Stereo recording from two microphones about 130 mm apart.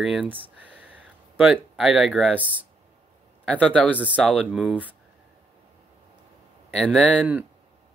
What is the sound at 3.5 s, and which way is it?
Speech, 10° left (ahead or behind).